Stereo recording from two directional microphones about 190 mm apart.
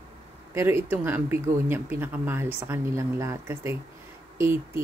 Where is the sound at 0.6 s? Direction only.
15° right (ahead or behind).